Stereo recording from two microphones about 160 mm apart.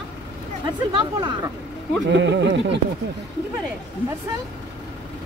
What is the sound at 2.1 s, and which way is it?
Speech, 90° right.